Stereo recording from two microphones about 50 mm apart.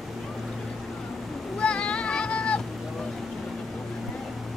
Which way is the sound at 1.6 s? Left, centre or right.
Left.